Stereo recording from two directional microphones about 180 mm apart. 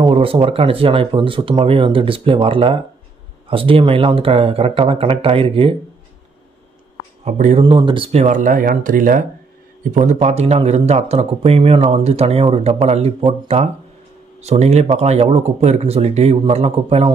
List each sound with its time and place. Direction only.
0.0 s a man's voice: 30° right (ahead or behind)
7.2 s a man's voice: 40° right (ahead or behind)
7.6 s a man's voice: 30° right (ahead or behind)